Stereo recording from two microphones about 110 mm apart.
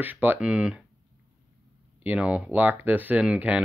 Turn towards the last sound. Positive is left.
turn(degrees=-10)  # may be behind; listen again after turning